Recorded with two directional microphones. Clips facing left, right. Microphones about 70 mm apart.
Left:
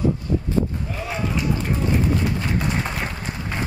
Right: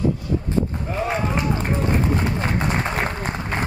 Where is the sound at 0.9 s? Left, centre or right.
Right.